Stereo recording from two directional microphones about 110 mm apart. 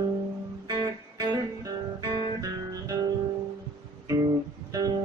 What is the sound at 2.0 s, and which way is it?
Guitar, 30° right (ahead or behind).